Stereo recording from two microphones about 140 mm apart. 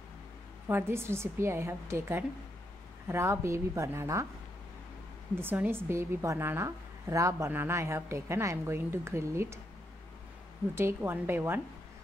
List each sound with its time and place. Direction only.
0.7 s a woman's voice: 15° right (ahead or behind)
5.3 s a woman's voice: 15° right (ahead or behind)
10.8 s a woman's voice: 15° right (ahead or behind)